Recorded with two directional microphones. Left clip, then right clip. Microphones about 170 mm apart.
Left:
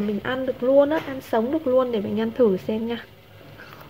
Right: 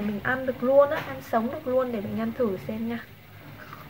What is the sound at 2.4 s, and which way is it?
Speech, 55° left (ahead or behind).